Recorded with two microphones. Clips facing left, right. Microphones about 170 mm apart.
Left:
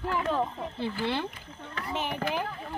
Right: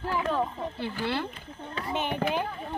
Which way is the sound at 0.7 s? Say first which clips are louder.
Left 1 dB; 25° left (ahead or behind).